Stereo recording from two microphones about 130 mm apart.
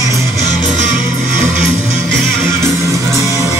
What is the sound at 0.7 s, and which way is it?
Music, 70° right (ahead or behind).